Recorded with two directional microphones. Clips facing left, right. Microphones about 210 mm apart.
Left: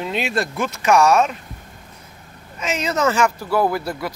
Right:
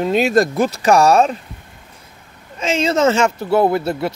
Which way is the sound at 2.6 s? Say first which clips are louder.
Right 5 dB; 25° right (ahead or behind).